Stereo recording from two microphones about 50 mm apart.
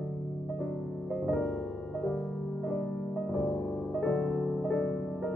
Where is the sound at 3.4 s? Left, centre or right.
Left.